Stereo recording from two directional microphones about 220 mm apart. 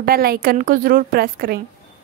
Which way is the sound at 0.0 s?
40° right (ahead or behind).